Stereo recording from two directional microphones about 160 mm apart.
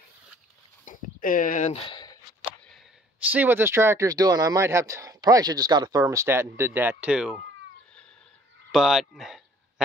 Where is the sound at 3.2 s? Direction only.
10° right (ahead or behind).